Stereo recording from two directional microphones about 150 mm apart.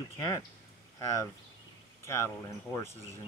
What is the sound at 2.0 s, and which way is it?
Speech, 15° left (ahead or behind).